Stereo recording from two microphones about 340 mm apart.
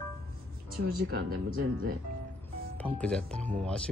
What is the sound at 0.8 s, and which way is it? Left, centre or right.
Speech, right.